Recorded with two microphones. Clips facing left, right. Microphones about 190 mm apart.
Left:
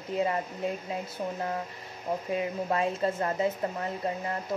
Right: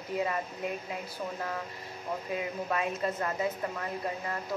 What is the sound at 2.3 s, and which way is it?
A woman's voice, 30° left (ahead or behind).